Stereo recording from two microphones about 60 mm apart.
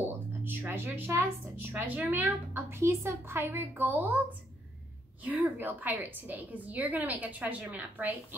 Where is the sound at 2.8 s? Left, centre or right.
Right.